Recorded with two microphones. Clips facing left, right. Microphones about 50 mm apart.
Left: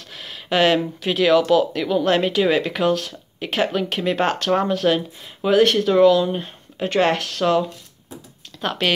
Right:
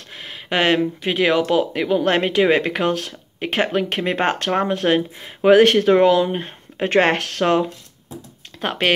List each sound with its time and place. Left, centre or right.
0.1 s speech: right